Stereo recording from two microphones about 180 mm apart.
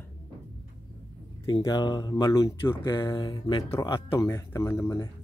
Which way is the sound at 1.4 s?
25° left (ahead or behind).